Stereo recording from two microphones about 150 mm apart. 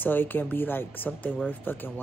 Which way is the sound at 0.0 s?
10° left (ahead or behind).